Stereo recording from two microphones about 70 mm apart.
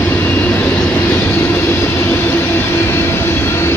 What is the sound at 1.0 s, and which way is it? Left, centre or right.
Train, left.